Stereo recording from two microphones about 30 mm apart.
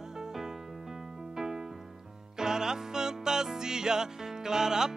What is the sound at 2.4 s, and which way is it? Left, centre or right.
Music, right.